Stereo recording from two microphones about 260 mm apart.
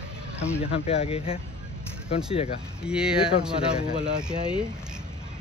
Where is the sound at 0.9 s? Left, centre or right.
Left.